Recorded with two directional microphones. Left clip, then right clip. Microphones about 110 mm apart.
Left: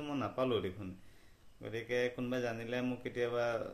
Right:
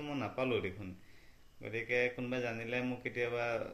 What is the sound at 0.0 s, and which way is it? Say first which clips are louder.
Speech: left 1 dB; 35° left (ahead or behind).